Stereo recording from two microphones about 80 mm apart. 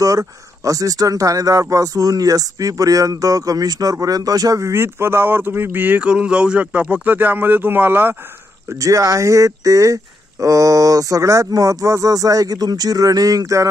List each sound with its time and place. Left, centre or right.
0.0 s speech: right
8.6 s speech: right